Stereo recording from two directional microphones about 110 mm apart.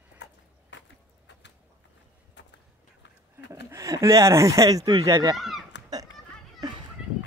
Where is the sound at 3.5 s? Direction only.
30° right (ahead or behind).